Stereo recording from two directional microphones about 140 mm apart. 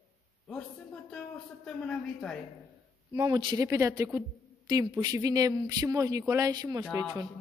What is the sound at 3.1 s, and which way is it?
Speech, 30° right (ahead or behind).